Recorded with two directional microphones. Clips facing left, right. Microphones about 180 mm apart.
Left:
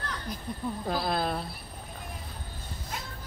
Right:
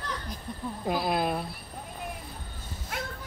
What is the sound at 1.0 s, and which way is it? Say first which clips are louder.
Speech: right 2 dB; 10° right (ahead or behind).